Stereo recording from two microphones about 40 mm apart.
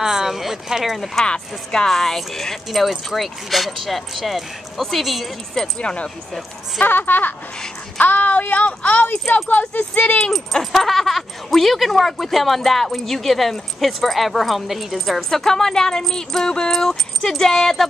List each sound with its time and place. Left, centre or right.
0.0 s speech: centre
0.9 s speech: centre
1.2 s speech: centre
1.9 s speech: centre
5.8 s speech: left
6.8 s child singing: left
9.3 s speech: left
10.3 s speech: centre
15.1 s speech: centre